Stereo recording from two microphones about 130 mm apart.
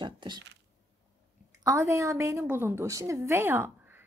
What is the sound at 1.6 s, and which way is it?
A woman's voice, 25° right (ahead or behind).